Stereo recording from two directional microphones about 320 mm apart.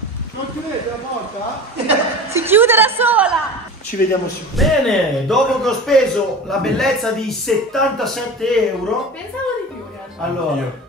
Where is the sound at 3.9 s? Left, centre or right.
Left.